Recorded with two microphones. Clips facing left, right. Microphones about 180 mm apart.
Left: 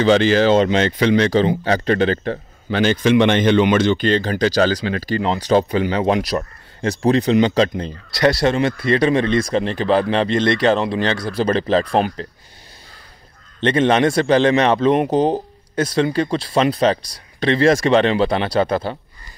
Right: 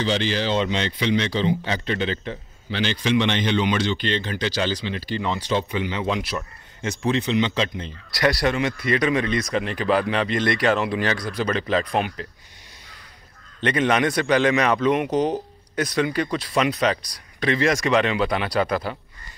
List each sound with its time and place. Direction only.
0.0 s speech: 50° left (ahead or behind)
6.2 s speech: 35° left (ahead or behind)
8.1 s a man's voice: 25° left (ahead or behind)
13.6 s a man's voice: 30° left (ahead or behind)